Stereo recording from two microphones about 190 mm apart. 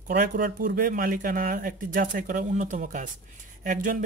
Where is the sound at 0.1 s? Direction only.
55° right (ahead or behind).